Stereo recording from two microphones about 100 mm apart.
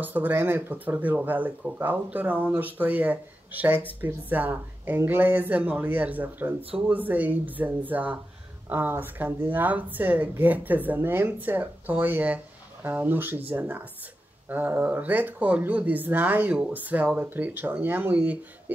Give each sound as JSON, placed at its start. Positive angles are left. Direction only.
{"t": 0.0, "sound": "speech", "side_deg": -20}